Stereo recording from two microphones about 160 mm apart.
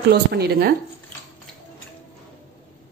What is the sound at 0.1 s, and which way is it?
Speech, 85° right.